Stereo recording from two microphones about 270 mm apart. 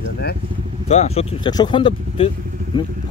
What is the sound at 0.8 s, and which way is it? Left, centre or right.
Speech, left.